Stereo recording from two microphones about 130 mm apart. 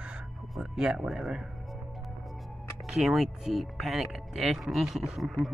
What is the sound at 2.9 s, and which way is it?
Speech, centre (ahead or behind).